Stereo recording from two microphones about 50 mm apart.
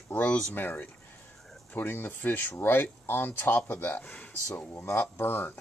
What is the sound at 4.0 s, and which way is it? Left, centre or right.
Speech, left.